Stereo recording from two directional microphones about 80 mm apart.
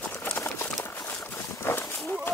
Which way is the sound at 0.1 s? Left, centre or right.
Left.